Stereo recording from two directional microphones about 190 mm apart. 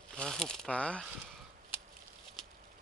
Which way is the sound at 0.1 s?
Centre (ahead or behind).